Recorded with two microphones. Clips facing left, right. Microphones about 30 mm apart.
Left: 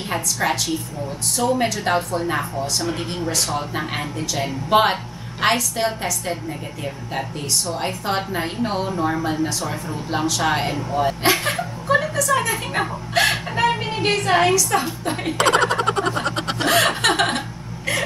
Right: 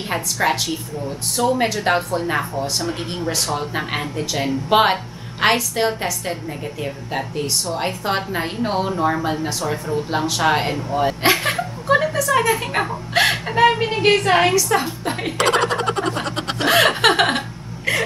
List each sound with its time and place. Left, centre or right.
0.1 s a woman's voice: centre
15.3 s a sound: centre
16.7 s chuckle: centre